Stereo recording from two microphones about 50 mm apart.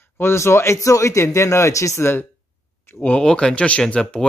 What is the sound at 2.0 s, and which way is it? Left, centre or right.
Speech, left.